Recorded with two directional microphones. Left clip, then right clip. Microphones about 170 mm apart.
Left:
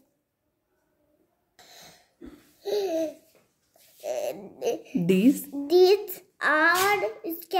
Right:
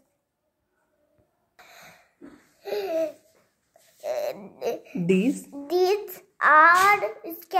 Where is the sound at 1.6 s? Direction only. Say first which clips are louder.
Right 2 dB; 10° left (ahead or behind).